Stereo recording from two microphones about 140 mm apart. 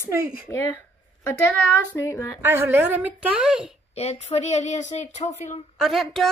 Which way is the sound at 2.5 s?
15° right (ahead or behind).